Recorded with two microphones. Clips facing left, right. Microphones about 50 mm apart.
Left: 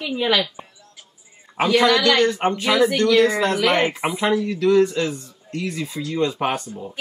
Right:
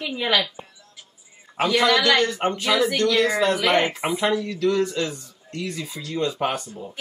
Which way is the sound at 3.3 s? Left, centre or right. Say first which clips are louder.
Even; left.